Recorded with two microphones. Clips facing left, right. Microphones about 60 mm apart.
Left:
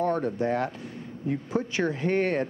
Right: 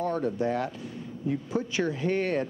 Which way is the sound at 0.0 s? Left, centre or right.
Left.